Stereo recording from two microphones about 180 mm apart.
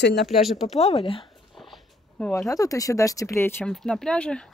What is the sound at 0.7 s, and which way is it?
Speech, 35° left (ahead or behind).